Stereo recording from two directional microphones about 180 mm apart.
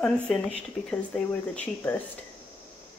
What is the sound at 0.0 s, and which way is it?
Speech, 5° left (ahead or behind).